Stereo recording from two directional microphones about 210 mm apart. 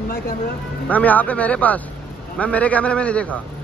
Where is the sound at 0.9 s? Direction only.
5° left (ahead or behind).